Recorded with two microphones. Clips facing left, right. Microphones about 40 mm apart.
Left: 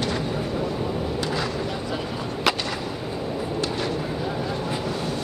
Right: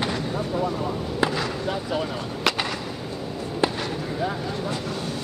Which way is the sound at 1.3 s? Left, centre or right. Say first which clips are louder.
Even; centre.